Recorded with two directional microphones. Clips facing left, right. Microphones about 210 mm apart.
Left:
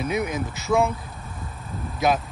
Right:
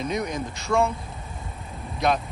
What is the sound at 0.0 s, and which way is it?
Speech, 5° left (ahead or behind).